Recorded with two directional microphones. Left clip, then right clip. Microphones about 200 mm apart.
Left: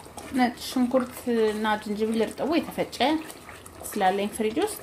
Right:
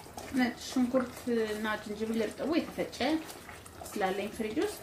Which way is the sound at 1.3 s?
50° left (ahead or behind).